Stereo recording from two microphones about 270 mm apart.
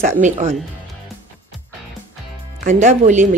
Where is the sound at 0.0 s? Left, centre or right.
Right.